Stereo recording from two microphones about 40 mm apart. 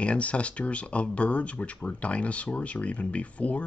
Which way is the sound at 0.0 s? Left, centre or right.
Left.